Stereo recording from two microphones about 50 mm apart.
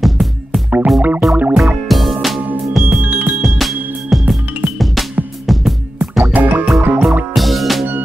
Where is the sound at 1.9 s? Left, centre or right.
Centre.